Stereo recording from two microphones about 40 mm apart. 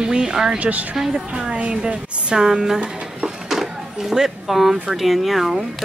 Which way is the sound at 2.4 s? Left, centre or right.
Centre.